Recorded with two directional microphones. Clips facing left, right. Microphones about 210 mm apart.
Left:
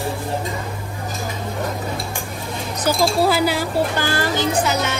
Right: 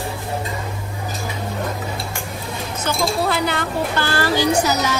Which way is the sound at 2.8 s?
5° left (ahead or behind).